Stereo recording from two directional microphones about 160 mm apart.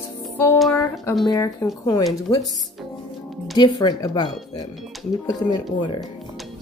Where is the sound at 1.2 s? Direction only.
20° left (ahead or behind).